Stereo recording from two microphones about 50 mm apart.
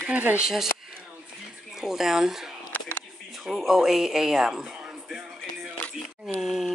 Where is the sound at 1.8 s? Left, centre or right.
Centre.